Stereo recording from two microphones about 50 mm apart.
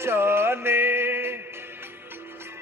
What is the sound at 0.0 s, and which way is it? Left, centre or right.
Music, right.